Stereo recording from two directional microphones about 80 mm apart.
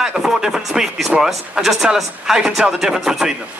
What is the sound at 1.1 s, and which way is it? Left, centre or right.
Speech, centre.